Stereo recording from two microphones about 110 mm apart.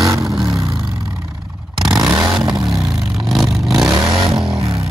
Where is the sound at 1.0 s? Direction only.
5° right (ahead or behind).